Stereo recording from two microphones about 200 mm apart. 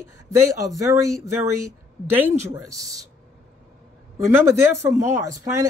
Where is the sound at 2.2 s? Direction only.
15° right (ahead or behind).